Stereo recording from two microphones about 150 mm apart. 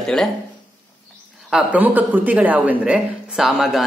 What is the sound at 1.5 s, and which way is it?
A woman's voice, 5° right (ahead or behind).